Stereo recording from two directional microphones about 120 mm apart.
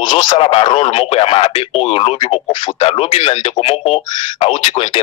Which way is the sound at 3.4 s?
45° left (ahead or behind).